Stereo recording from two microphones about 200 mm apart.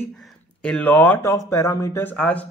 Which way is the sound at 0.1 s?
5° left (ahead or behind).